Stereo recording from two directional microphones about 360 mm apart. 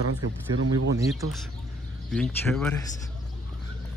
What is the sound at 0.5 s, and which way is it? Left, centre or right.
Speech, right.